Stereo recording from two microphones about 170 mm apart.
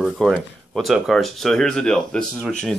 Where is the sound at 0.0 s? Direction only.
Centre (ahead or behind).